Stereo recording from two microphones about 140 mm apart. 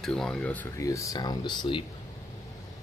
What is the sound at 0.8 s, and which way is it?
Speech, 20° left (ahead or behind).